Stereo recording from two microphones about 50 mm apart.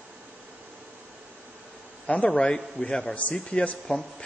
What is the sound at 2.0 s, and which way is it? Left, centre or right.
Speech, left.